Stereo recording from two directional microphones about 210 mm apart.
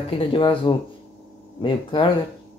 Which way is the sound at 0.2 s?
25° left (ahead or behind).